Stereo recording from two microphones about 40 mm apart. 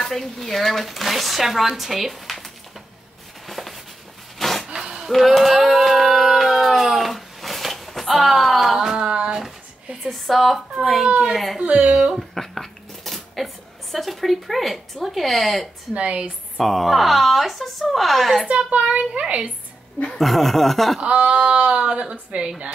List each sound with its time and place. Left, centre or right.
0.0 s speech: centre
3.4 s a sound: centre
4.7 s a sound: centre
5.0 s a sound: centre
8.9 s a sound: right
10.0 s a woman's voice: centre
11.8 s a child's voice: centre
12.2 s dishes: centre
13.9 s speech: centre
15.9 s a child's voice: right
16.5 s speech: centre
18.8 s a child's voice: right
20.2 s speech: centre
21.0 s speech: right